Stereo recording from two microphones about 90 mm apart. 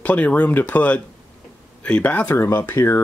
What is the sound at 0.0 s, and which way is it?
Speech, 15° left (ahead or behind).